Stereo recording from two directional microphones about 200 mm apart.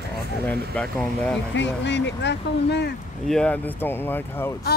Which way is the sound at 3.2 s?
5° left (ahead or behind).